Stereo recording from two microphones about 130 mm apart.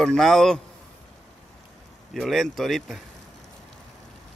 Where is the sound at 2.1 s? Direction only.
Centre (ahead or behind).